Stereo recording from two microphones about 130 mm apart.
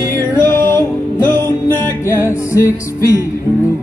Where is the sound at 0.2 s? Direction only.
25° left (ahead or behind).